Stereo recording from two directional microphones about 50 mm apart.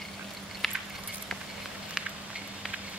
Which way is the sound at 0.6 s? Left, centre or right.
Centre.